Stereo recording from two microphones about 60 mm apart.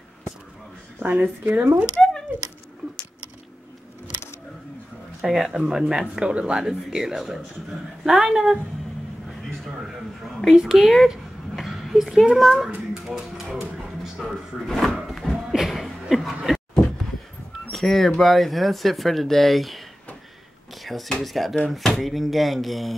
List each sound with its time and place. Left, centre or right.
0.9 s a woman's voice: right
5.2 s speech: centre
9.6 s a man's voice: centre
12.9 s music: centre
14.7 s speech: centre
15.0 s speech: centre
15.5 s chuckle: centre
16.4 s a sound: centre
17.6 s speech: centre
20.7 s a sound: centre
21.1 s speech: centre